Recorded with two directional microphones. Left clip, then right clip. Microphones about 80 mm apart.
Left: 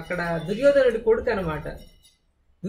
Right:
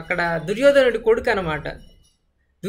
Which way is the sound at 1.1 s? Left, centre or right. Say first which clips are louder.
Right 3 dB; right.